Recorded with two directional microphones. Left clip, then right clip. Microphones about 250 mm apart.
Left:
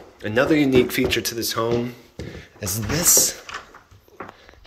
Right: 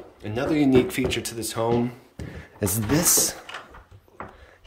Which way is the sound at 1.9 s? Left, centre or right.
Centre.